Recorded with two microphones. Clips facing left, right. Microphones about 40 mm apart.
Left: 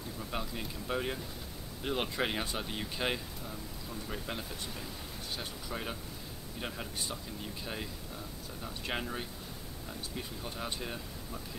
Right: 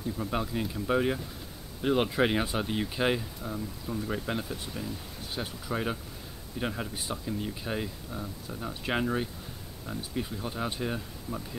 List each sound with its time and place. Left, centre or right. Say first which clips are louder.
0.2 s speech: right 6 dB; centre
3.4 s speech: right 7 dB; right
3.9 s speech: right 8 dB; centre